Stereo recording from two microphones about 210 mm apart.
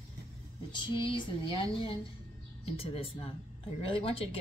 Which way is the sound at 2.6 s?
25° left (ahead or behind).